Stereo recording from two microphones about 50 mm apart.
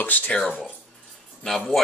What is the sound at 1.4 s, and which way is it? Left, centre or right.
Speech, centre.